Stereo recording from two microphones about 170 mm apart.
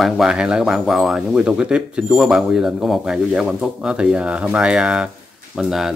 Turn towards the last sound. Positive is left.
turn(degrees=0)  # may be behind; listen again after turning